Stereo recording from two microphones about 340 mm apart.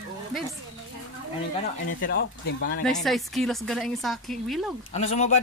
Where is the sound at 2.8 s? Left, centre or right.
Centre.